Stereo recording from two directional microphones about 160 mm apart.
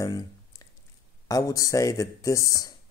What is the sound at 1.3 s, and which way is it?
Speech, 20° left (ahead or behind).